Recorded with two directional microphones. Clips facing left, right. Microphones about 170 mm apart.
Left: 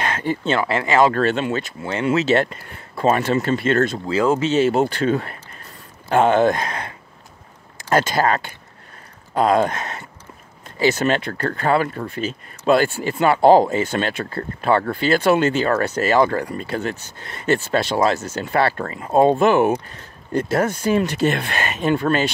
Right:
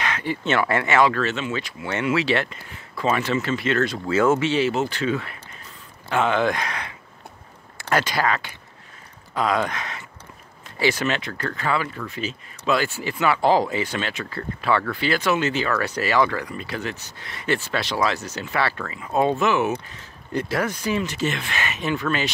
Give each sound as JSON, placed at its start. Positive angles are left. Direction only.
{"t": 0.0, "sound": "a sound", "side_deg": 45}
{"t": 0.6, "sound": "speech", "side_deg": 25}
{"t": 1.8, "sound": "speech", "side_deg": 30}
{"t": 4.1, "sound": "speech", "side_deg": 30}
{"t": 7.9, "sound": "speech", "side_deg": 45}
{"t": 19.4, "sound": "speech", "side_deg": 50}